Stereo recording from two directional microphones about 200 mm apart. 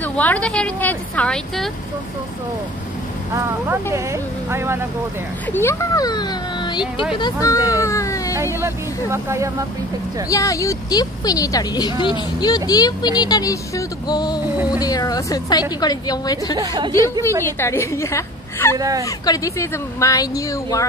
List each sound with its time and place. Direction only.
0.0 s a woman's voice: 10° left (ahead or behind)
3.3 s speech: 15° right (ahead or behind)
5.5 s a woman's voice: 10° left (ahead or behind)
8.5 s speech: 15° right (ahead or behind)
10.3 s a woman's voice: 15° left (ahead or behind)
16.5 s speech: 20° right (ahead or behind)
17.5 s a woman's voice: 10° left (ahead or behind)
18.8 s speech: 15° right (ahead or behind)
19.0 s a woman's voice: 20° left (ahead or behind)